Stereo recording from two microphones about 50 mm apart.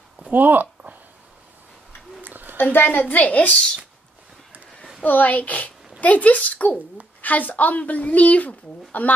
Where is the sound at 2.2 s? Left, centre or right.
Right.